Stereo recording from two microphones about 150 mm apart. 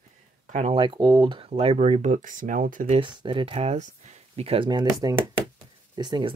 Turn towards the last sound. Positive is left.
turn(degrees=-30)  # may be behind; listen again after turning